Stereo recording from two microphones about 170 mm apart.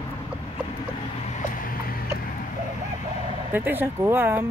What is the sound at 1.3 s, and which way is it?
Vehicle, 55° left (ahead or behind).